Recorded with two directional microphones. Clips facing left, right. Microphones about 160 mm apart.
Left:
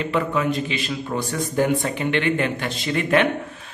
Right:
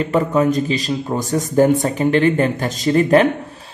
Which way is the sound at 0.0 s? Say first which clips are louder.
Right 6 dB; 40° right (ahead or behind).